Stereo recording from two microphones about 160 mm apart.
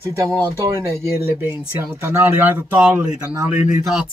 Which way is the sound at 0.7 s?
15° right (ahead or behind).